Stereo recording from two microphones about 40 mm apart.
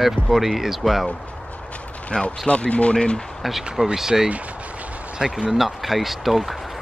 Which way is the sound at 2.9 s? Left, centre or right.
Left.